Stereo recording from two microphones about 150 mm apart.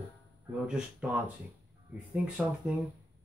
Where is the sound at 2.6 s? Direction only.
10° right (ahead or behind).